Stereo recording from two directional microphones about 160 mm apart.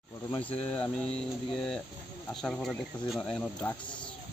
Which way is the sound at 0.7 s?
5° left (ahead or behind).